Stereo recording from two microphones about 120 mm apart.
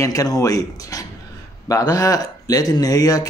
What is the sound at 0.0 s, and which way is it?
Speech, 30° left (ahead or behind).